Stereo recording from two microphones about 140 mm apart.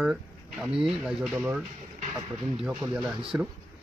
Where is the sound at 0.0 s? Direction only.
5° right (ahead or behind).